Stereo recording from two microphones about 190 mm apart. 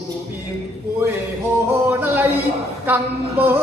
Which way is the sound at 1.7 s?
10° right (ahead or behind).